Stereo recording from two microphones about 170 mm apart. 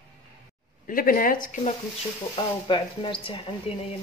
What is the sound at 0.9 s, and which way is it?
Speech, 55° left (ahead or behind).